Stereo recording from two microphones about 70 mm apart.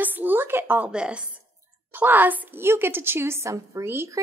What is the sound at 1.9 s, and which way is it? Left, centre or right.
A woman's voice, right.